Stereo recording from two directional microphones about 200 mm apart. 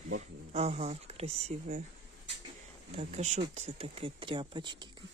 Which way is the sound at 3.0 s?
35° right (ahead or behind).